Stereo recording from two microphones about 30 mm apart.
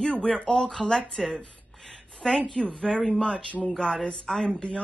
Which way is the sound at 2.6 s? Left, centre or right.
Left.